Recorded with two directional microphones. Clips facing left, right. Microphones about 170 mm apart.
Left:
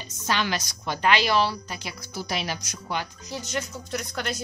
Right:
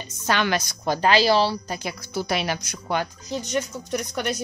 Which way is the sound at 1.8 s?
60° right (ahead or behind).